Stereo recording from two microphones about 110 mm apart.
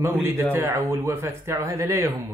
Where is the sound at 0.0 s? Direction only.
20° right (ahead or behind).